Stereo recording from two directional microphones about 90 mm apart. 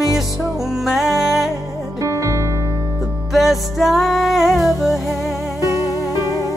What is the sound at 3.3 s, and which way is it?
Music, centre (ahead or behind).